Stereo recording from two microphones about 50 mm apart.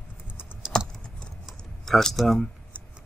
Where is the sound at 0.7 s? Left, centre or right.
Centre.